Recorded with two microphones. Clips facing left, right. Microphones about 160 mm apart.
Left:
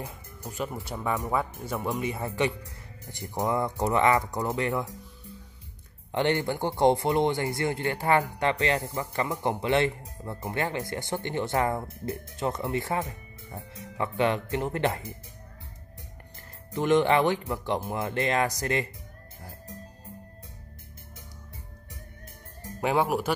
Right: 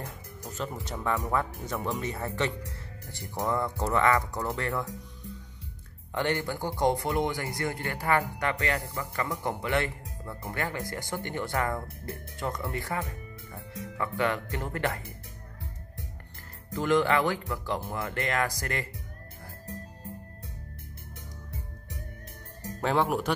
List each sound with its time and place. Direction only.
0.0 s music: 10° left (ahead or behind)
0.7 s speech: 10° left (ahead or behind)
6.1 s speech: 25° left (ahead or behind)
16.7 s speech: 20° left (ahead or behind)
22.8 s speech: 10° left (ahead or behind)